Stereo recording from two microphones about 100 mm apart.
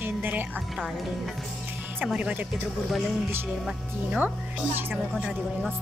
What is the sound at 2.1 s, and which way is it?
Speech, 15° right (ahead or behind).